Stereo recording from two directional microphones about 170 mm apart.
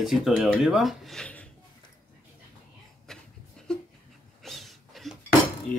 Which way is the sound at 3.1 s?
5° left (ahead or behind).